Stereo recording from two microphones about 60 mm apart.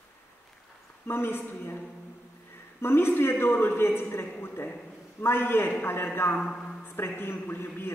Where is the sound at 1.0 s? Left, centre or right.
Left.